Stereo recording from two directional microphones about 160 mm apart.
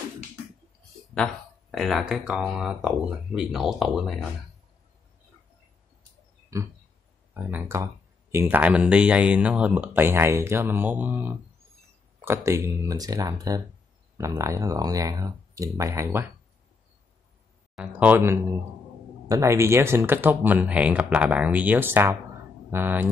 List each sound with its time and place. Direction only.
1.1 s speech: 5° left (ahead or behind)
6.5 s speech: 20° right (ahead or behind)
17.7 s speech: 10° right (ahead or behind)